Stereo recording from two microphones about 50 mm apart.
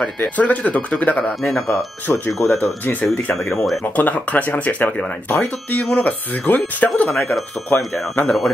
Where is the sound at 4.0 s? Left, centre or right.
Left.